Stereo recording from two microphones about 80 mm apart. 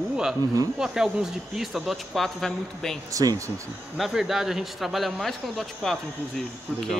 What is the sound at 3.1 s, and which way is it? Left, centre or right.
Speech, right.